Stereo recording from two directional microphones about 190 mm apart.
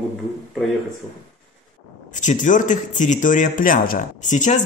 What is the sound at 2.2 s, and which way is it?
Speech, 40° left (ahead or behind).